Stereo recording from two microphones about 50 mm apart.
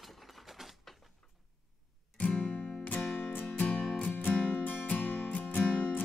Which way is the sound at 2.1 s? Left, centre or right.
Left.